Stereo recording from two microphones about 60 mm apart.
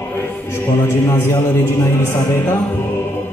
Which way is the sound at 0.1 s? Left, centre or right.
Left.